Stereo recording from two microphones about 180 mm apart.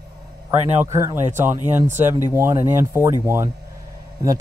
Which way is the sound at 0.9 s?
15° right (ahead or behind).